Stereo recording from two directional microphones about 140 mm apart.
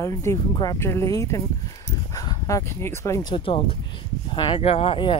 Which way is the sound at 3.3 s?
40° left (ahead or behind).